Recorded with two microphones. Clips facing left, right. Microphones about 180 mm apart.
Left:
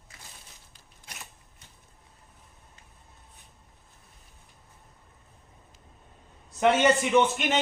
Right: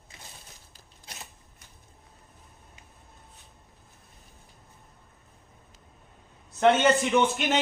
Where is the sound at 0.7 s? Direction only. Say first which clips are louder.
Right 1 dB; 30° right (ahead or behind).